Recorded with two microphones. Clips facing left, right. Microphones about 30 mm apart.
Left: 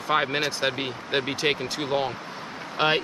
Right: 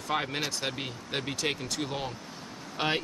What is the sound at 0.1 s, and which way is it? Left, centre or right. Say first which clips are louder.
Speech: left 7 dB; left.